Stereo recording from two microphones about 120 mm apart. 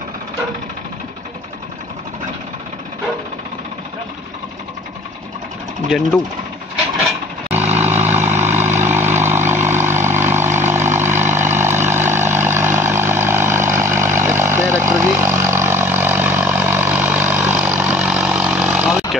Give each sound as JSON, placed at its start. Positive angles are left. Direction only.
{"t": 5.9, "sound": "speech", "side_deg": 0}
{"t": 7.6, "sound": "vehicle", "side_deg": -65}
{"t": 7.9, "sound": "vehicle", "side_deg": -20}